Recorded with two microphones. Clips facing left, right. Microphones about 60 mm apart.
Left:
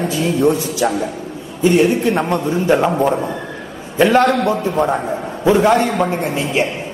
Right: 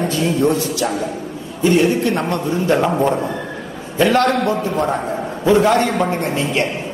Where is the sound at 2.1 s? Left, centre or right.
Centre.